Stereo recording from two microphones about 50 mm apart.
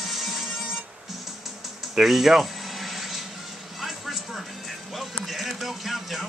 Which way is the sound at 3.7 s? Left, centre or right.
Centre.